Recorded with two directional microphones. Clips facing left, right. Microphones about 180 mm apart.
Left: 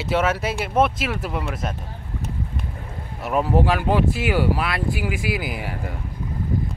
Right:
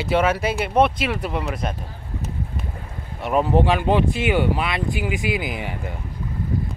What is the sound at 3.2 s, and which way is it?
Speech, 5° left (ahead or behind).